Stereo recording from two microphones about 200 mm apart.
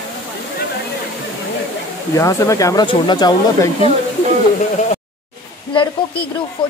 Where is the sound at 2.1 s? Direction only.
15° left (ahead or behind).